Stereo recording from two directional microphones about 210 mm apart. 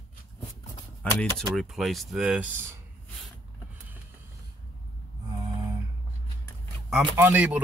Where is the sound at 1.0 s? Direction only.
5° left (ahead or behind).